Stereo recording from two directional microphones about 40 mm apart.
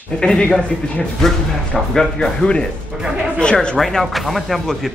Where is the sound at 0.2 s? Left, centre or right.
Left.